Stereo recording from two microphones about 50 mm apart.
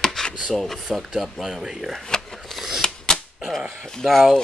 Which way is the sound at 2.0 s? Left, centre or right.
Centre.